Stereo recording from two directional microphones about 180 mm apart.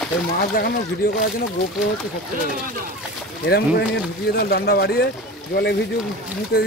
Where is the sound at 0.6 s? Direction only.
55° left (ahead or behind).